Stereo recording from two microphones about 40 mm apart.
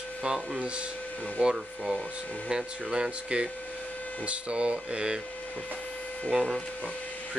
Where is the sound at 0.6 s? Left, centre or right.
Right.